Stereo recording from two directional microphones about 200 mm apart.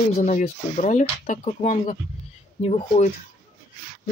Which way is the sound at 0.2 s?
40° left (ahead or behind).